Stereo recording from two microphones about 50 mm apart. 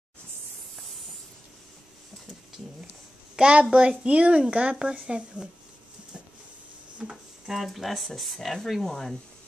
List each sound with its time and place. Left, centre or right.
3.3 s a woman's voice: centre
4.7 s speech: centre
7.1 s speech: centre